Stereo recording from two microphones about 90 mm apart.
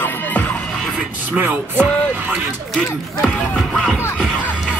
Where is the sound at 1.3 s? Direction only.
20° right (ahead or behind).